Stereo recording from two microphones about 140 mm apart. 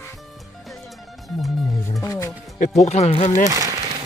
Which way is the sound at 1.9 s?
25° left (ahead or behind).